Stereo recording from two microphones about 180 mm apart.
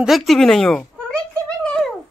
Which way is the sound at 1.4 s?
5° left (ahead or behind).